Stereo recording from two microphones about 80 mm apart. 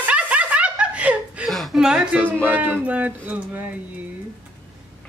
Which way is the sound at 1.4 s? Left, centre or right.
Centre.